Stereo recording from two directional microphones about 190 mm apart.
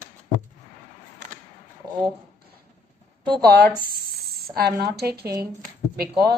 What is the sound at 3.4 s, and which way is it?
Speech, 55° right (ahead or behind).